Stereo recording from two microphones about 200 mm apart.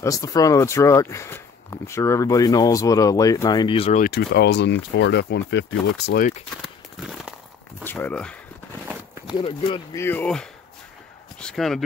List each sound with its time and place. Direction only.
0.0 s speech: 15° left (ahead or behind)
4.0 s speech: 55° left (ahead or behind)
6.5 s a sound: centre (ahead or behind)
7.8 s speech: 10° left (ahead or behind)
8.8 s a sound: 10° right (ahead or behind)
9.4 s speech: 25° left (ahead or behind)
9.9 s speech: 10° left (ahead or behind)